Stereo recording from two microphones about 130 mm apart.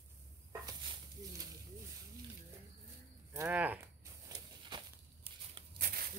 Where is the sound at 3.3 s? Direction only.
15° right (ahead or behind).